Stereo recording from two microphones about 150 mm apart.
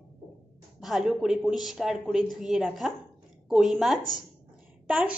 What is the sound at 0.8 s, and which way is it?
A woman's voice, 5° right (ahead or behind).